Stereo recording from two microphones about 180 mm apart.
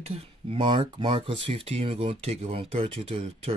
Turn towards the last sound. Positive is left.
turn(degrees=-35)  # may be behind; listen again after turning